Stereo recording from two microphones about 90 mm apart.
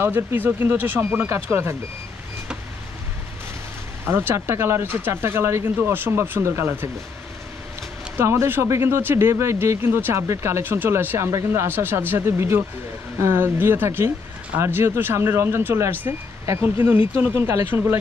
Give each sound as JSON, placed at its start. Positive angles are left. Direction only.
{"t": 0.0, "sound": "speech", "side_deg": -25}
{"t": 4.0, "sound": "speech", "side_deg": -25}
{"t": 8.2, "sound": "speech", "side_deg": -30}